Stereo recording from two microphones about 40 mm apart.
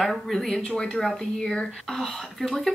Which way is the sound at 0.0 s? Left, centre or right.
Centre.